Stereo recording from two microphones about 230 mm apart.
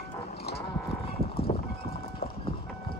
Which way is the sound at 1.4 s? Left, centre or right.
Left.